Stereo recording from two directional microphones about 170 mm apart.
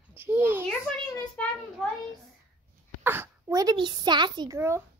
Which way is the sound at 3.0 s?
15° right (ahead or behind).